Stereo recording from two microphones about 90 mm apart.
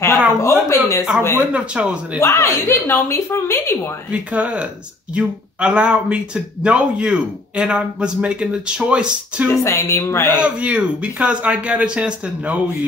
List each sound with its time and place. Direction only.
0.4 s speech: 30° left (ahead or behind)
1.5 s speech: 15° right (ahead or behind)
2.1 s a woman's voice: 30° left (ahead or behind)
4.1 s speech: 15° right (ahead or behind)
9.5 s speech: 35° left (ahead or behind)
10.4 s speech: 15° right (ahead or behind)